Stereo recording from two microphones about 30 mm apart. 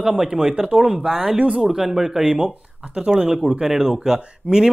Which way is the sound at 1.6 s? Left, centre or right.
Centre.